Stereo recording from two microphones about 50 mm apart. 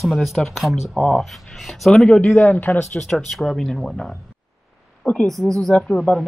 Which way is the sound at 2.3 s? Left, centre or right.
Left.